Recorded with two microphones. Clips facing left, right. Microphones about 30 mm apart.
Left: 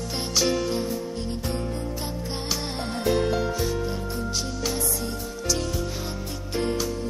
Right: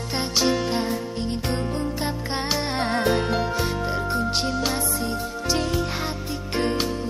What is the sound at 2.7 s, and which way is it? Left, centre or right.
Music, right.